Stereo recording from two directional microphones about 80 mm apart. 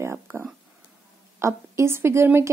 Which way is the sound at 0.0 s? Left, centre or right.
Right.